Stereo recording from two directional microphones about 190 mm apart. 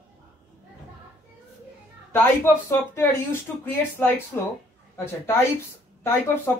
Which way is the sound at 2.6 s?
15° left (ahead or behind).